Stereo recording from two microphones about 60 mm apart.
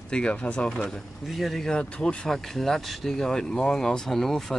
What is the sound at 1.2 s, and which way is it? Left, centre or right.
Speech, centre.